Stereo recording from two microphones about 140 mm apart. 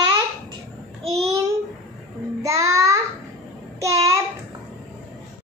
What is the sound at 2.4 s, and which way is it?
Child singing, 25° right (ahead or behind).